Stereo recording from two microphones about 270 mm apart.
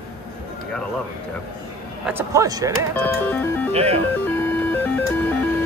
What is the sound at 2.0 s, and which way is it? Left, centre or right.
Speech, centre.